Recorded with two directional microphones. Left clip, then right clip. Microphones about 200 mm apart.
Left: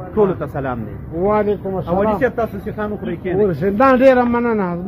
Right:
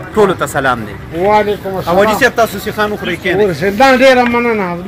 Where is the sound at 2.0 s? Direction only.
20° right (ahead or behind).